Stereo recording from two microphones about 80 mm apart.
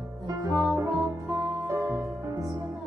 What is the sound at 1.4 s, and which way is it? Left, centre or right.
Music, right.